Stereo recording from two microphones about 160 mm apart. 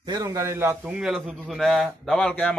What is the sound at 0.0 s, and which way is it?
A man's voice, 25° right (ahead or behind).